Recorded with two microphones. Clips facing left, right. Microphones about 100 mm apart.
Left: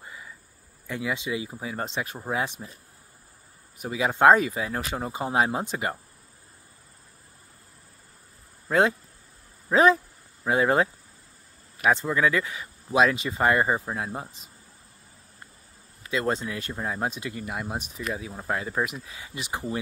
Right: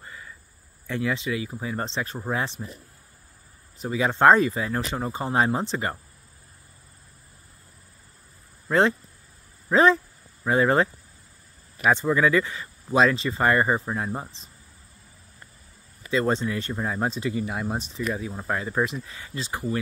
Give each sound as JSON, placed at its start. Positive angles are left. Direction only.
{"t": 0.0, "sound": "cricket", "side_deg": 10}
{"t": 0.8, "sound": "speech", "side_deg": 10}
{"t": 1.6, "sound": "speech", "side_deg": 10}
{"t": 3.7, "sound": "speech", "side_deg": 10}
{"t": 8.6, "sound": "speech", "side_deg": 5}
{"t": 16.1, "sound": "speech", "side_deg": 5}